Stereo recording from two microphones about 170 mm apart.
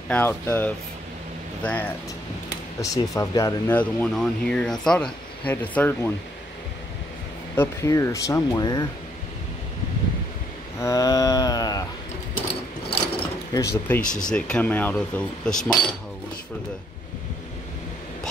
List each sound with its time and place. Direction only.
0.1 s speech: 10° left (ahead or behind)
2.8 s speech: 20° left (ahead or behind)
7.5 s speech: 15° left (ahead or behind)
10.8 s speech: 20° left (ahead or behind)
13.5 s speech: 20° left (ahead or behind)